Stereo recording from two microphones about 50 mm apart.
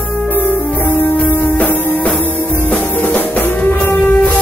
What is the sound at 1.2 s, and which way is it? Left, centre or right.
Music, left.